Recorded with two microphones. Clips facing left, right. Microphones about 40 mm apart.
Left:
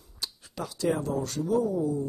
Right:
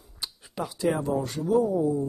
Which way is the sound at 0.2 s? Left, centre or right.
Centre.